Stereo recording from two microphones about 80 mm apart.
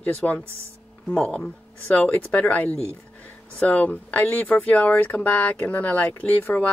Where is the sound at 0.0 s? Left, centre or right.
Left.